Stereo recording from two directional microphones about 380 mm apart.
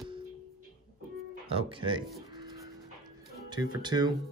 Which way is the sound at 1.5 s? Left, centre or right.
Centre.